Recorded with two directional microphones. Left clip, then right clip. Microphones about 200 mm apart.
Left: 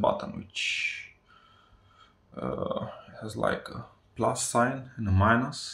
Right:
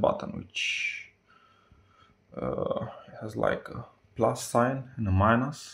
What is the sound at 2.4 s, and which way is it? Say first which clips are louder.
Speech: right 2 dB; 45° right (ahead or behind).